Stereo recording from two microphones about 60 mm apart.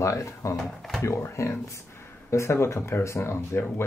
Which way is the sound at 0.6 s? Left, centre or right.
Centre.